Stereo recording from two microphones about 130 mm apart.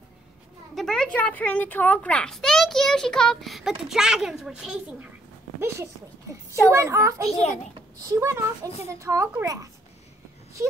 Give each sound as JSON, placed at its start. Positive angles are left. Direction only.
{"t": 0.7, "sound": "a child's voice", "side_deg": 5}
{"t": 5.6, "sound": "a child's voice", "side_deg": -20}